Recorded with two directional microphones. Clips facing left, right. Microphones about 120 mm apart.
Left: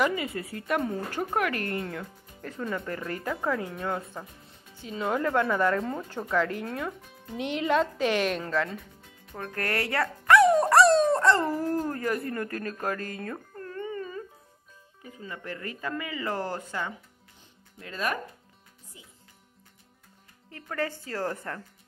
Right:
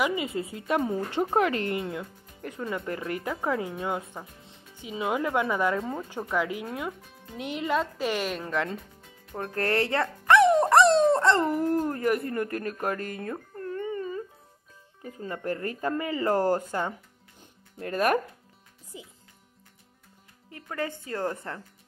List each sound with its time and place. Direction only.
0.1 s speech: 20° right (ahead or behind)
2.9 s speech: 20° right (ahead or behind); by 8.5 s centre (ahead or behind)
8.5 s speech: 25° right (ahead or behind)
12.8 s music: 20° right (ahead or behind)
15.1 s speech: 45° right (ahead or behind)
20.7 s speech: 20° right (ahead or behind)